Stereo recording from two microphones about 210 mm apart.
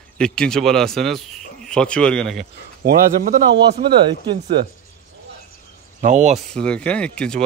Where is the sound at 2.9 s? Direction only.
45° right (ahead or behind).